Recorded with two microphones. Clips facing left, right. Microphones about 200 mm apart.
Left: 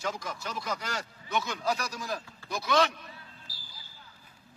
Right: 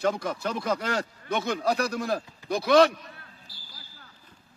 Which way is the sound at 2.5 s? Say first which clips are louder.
Right 8 dB; 55° right (ahead or behind).